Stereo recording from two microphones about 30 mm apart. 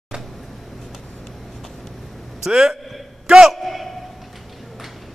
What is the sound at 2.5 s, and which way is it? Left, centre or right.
Speech, right.